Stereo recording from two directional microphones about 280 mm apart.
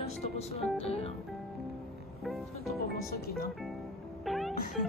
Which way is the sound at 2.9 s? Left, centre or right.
Left.